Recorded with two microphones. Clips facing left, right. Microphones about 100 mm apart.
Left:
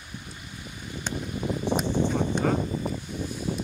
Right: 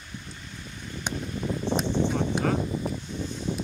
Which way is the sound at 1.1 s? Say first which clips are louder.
Left 1 dB; 15° left (ahead or behind).